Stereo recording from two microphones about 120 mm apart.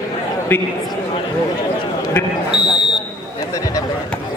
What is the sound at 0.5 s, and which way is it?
Speech, 15° left (ahead or behind).